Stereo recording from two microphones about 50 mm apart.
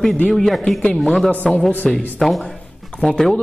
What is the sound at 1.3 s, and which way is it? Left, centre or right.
Speech, left.